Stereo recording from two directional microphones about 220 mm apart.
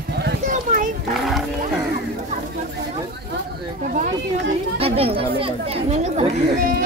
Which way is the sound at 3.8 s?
35° right (ahead or behind).